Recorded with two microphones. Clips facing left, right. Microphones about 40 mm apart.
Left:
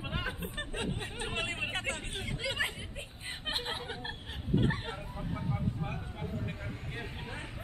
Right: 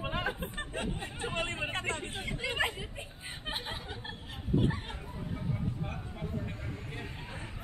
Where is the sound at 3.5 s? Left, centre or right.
Left.